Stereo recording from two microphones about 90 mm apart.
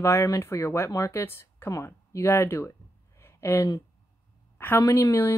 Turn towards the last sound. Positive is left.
turn(degrees=30)  # may be behind; listen again after turning